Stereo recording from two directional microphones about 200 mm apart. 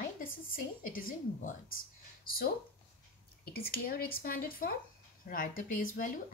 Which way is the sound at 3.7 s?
45° left (ahead or behind).